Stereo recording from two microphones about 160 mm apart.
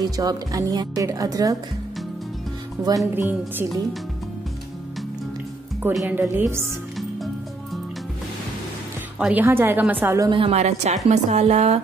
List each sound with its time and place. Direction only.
0.0 s speech: 25° right (ahead or behind)
3.2 s a woman's voice: 15° right (ahead or behind)
6.0 s a woman's voice: 10° right (ahead or behind)
9.2 s a woman's voice: 10° right (ahead or behind)
10.3 s a woman's voice: 40° right (ahead or behind)